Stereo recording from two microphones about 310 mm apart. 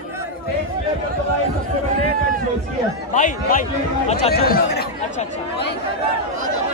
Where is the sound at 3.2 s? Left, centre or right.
Left.